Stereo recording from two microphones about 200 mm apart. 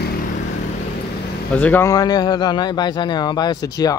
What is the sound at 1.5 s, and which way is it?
A man's voice, 10° left (ahead or behind).